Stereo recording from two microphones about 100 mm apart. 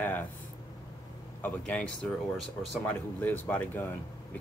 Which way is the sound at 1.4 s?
10° left (ahead or behind).